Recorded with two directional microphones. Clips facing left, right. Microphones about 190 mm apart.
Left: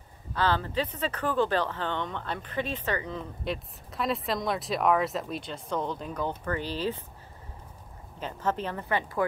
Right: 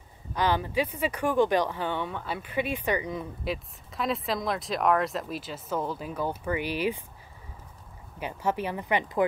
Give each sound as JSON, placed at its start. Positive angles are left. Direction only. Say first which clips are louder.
{"t": 0.3, "sound": "speech", "louder": "right 1 dB", "side_deg": -15}
{"t": 8.2, "sound": "speech", "louder": "right 1 dB", "side_deg": -10}